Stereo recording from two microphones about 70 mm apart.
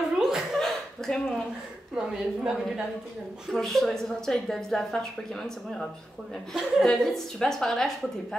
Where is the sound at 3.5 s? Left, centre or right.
Centre.